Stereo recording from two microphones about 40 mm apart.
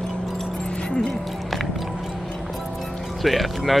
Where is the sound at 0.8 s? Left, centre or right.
Left.